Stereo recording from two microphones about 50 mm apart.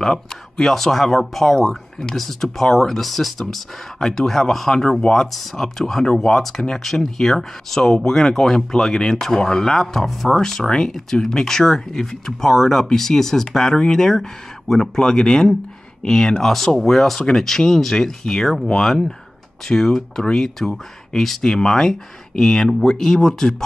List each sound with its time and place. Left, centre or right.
0.0 s speech: centre